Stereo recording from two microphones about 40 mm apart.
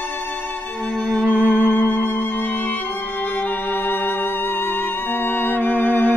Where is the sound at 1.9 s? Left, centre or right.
Left.